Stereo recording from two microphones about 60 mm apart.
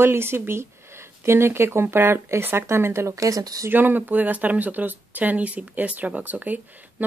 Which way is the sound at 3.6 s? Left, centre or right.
Right.